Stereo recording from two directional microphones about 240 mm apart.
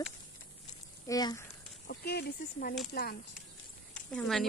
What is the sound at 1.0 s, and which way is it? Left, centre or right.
Speech, centre.